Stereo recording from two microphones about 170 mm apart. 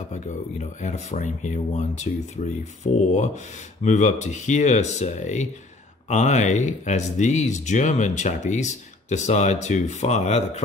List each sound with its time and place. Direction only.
0.1 s speech: 45° left (ahead or behind)